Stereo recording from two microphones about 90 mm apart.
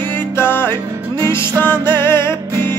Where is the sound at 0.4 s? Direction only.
25° left (ahead or behind).